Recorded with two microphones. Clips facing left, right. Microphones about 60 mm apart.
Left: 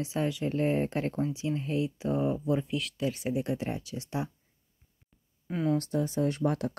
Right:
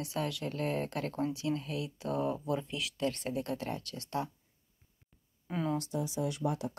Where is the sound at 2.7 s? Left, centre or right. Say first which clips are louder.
Left 3 dB; centre.